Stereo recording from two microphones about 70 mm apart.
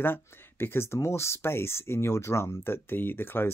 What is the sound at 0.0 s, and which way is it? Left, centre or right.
Speech, left.